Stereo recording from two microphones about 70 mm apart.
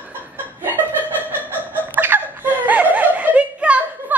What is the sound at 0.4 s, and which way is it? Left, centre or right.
Chuckle, right.